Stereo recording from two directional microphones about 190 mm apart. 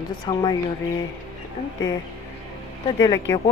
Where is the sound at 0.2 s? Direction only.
25° left (ahead or behind).